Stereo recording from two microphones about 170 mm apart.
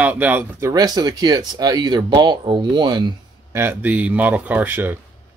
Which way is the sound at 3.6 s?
10° right (ahead or behind).